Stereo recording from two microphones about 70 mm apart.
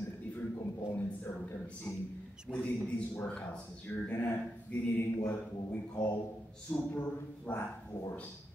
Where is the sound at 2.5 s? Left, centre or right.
Centre.